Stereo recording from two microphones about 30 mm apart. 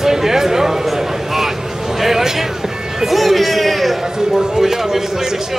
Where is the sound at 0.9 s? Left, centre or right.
Centre.